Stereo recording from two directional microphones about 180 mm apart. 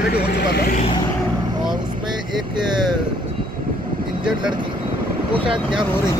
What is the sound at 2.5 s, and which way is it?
Speech, 25° right (ahead or behind).